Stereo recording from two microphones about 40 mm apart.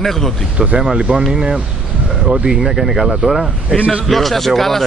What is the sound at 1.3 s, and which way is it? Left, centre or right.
Speech, centre.